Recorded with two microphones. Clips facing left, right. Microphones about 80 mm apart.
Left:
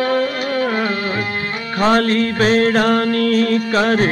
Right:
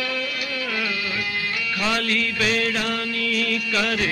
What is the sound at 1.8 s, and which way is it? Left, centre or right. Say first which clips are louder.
Mantra: left 11 dB; left.